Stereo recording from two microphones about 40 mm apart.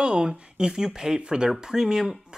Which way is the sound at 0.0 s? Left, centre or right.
Right.